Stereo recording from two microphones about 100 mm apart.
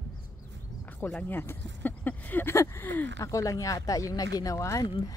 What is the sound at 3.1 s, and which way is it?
Speech, 35° left (ahead or behind).